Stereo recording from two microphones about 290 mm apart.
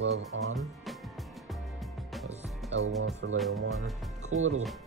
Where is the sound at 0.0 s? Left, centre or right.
Right.